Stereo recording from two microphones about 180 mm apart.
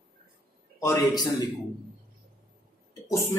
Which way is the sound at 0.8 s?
20° left (ahead or behind).